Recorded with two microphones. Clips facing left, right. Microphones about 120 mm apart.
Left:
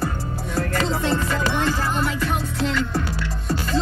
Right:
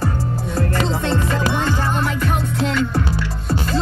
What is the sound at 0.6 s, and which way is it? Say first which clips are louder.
Music: right 1 dB; 30° right (ahead or behind).